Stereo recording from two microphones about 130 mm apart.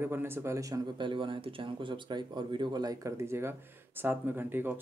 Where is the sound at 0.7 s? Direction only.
40° right (ahead or behind).